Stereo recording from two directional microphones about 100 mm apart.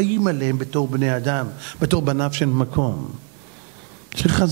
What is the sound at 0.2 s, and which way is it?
A man's voice, 20° right (ahead or behind).